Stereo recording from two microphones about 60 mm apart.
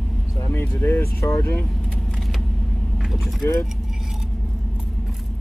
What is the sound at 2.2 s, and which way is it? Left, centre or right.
Vehicle, centre.